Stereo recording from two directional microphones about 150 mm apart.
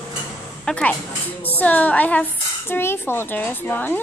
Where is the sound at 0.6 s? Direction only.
5° left (ahead or behind).